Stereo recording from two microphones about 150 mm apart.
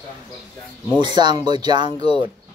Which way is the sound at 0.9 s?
30° right (ahead or behind).